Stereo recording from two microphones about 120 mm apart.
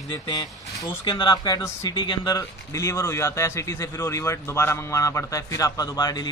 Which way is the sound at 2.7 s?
25° left (ahead or behind).